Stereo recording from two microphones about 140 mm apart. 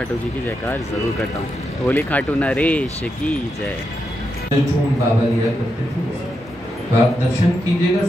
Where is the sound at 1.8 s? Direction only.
10° left (ahead or behind).